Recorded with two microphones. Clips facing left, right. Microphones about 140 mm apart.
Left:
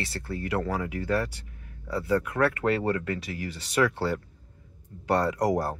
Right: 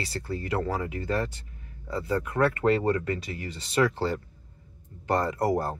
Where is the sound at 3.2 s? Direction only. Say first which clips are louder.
Left 2 dB; 75° left (ahead or behind).